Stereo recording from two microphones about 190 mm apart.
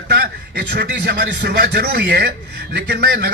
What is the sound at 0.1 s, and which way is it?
A man's voice, 65° right (ahead or behind).